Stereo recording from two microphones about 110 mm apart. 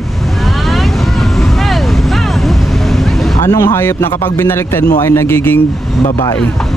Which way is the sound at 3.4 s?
30° left (ahead or behind).